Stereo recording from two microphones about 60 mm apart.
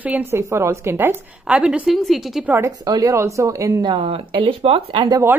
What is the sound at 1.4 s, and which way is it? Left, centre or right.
Speech, centre.